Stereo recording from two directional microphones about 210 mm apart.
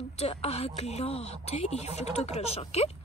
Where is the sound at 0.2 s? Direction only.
30° left (ahead or behind).